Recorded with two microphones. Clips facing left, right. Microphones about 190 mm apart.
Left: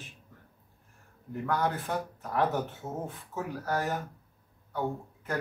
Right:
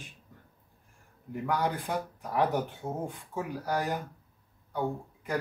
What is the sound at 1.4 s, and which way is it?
Speech, 15° right (ahead or behind).